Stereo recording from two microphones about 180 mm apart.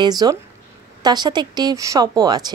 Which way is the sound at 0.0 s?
20° right (ahead or behind).